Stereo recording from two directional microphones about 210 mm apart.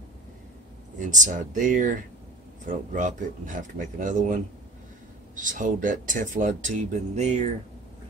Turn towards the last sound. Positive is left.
turn(degrees=-35)  # may be behind; listen again after turning